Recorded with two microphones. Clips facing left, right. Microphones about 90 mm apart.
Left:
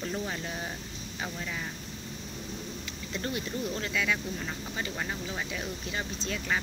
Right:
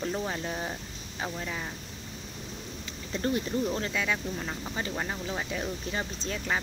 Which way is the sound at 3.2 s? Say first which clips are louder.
Right 6 dB; 30° right (ahead or behind).